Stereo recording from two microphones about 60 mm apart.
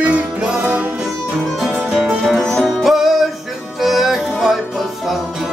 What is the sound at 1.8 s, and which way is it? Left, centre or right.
Music, centre.